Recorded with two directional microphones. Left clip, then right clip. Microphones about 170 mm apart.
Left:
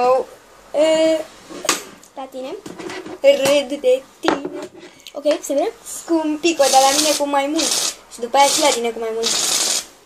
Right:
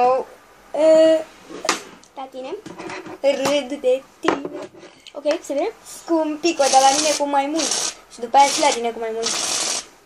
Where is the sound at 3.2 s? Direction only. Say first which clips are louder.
Left 5 dB; 15° right (ahead or behind).